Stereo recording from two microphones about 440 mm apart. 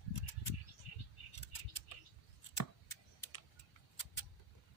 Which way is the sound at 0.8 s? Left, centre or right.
Left.